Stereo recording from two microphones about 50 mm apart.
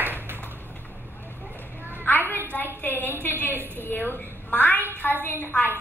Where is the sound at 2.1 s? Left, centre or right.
Left.